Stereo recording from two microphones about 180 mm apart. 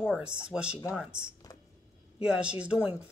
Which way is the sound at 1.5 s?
20° left (ahead or behind).